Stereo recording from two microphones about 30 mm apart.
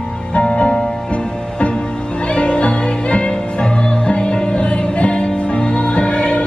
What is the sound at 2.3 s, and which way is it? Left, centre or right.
Music, left.